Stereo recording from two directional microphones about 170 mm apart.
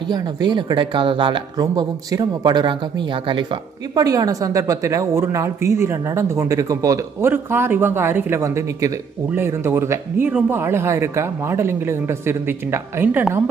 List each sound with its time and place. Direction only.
0.1 s speech: 25° right (ahead or behind)